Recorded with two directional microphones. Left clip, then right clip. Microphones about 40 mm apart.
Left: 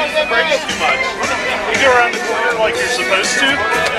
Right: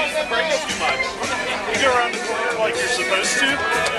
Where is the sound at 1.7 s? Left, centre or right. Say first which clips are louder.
Left 6 dB; left.